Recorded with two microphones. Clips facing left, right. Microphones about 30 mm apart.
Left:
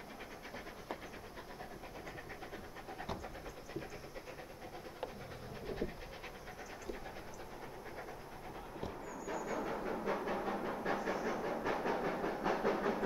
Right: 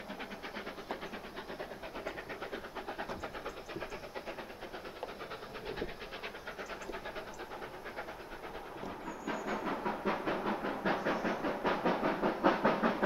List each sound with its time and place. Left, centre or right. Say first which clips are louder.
1.6 s train: right 7 dB; right
9.0 s train: right 5 dB; right